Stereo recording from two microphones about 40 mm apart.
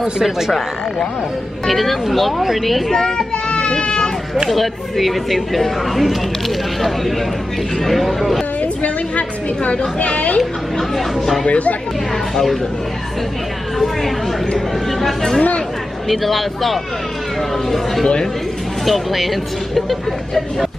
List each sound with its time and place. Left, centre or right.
0.0 s speech: centre
1.7 s speech: centre
2.9 s a child's voice: centre
4.5 s speech: centre
7.8 s speech: centre
8.8 s a woman's voice: left
10.8 s speech: centre
11.4 s a woman's voice: left
14.9 s speech: centre
18.0 s speech: centre
18.9 s speech: centre